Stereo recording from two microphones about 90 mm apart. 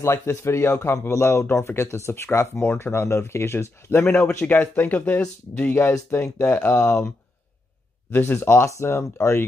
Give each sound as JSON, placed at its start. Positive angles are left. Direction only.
{"t": 0.0, "sound": "speech", "side_deg": 30}
{"t": 6.4, "sound": "speech", "side_deg": 15}
{"t": 8.1, "sound": "speech", "side_deg": 25}